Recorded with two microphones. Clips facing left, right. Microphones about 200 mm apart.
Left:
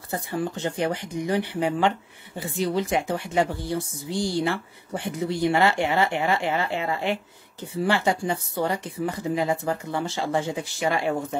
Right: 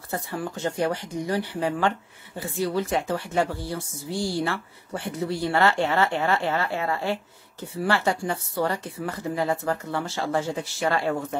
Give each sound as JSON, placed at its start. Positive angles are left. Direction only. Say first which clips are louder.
{"t": 0.1, "sound": "speech", "louder": "left 2 dB", "side_deg": 20}